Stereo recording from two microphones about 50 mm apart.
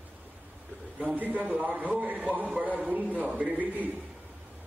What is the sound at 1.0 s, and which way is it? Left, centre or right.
A man's voice, right.